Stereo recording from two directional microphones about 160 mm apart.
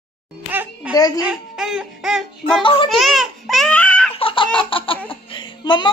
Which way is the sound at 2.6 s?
30° left (ahead or behind).